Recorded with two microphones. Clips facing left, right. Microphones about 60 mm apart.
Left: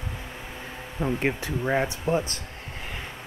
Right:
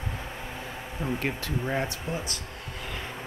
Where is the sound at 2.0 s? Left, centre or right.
Left.